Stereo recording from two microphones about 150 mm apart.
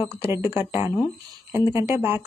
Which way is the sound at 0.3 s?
15° right (ahead or behind).